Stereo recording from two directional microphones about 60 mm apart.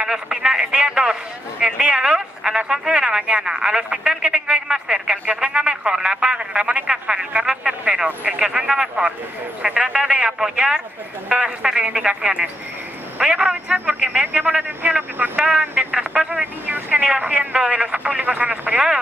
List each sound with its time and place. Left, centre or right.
0.0 s speech: centre
16.6 s speech: right
17.2 s speech: right